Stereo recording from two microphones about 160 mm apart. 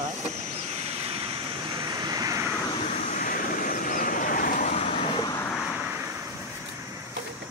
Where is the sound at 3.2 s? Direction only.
60° left (ahead or behind).